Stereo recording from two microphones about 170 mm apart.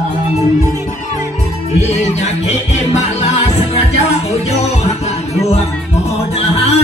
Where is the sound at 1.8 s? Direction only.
40° left (ahead or behind).